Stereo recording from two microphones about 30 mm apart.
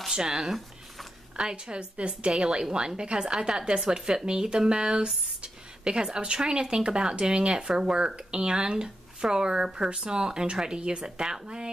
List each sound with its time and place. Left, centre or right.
0.1 s speech: centre
1.3 s speech: right